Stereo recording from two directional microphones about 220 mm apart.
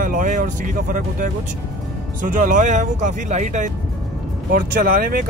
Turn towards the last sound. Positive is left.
turn(degrees=-40)  # may be behind; listen again after turning